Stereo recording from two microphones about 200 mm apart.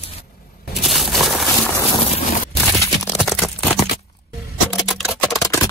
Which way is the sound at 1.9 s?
30° left (ahead or behind).